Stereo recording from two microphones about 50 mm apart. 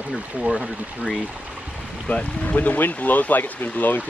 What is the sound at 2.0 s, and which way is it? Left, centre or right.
Speech, left.